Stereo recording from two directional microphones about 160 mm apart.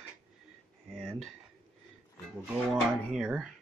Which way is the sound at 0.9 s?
5° left (ahead or behind).